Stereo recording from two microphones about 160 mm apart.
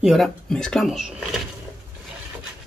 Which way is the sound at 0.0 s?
Centre (ahead or behind).